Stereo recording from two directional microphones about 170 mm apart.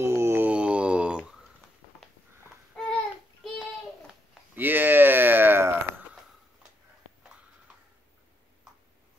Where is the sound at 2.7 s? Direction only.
Centre (ahead or behind).